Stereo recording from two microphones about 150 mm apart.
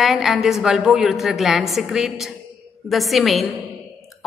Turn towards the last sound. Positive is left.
turn(degrees=0)  # may be behind; listen again after turning